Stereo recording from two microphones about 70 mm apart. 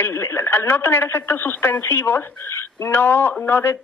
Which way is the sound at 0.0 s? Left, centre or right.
Left.